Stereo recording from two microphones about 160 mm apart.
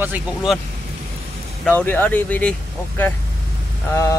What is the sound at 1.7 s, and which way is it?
Speech, 10° left (ahead or behind).